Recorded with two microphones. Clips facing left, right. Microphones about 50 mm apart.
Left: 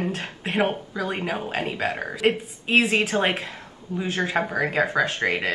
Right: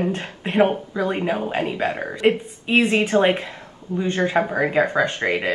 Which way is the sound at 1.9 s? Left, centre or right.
Centre.